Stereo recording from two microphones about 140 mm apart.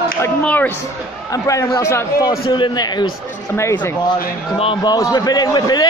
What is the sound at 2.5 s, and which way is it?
Speech, 30° left (ahead or behind).